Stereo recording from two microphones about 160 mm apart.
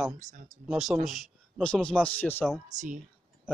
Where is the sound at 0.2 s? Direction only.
50° right (ahead or behind).